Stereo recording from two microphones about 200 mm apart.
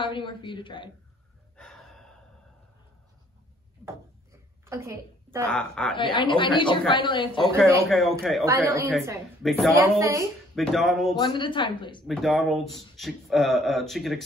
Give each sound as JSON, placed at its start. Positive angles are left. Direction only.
{"t": 0.0, "sound": "a woman's voice", "side_deg": 25}
{"t": 1.6, "sound": "gasp", "side_deg": 0}
{"t": 4.6, "sound": "a woman's voice", "side_deg": -15}
{"t": 5.5, "sound": "speech", "side_deg": 5}
{"t": 5.9, "sound": "a woman's voice", "side_deg": 25}
{"t": 7.9, "sound": "speech", "side_deg": 0}
{"t": 8.5, "sound": "speech", "side_deg": -15}
{"t": 9.4, "sound": "speech", "side_deg": 0}
{"t": 9.8, "sound": "speech", "side_deg": -15}
{"t": 10.5, "sound": "speech", "side_deg": 0}
{"t": 11.1, "sound": "a woman's voice", "side_deg": 25}
{"t": 12.1, "sound": "speech", "side_deg": 0}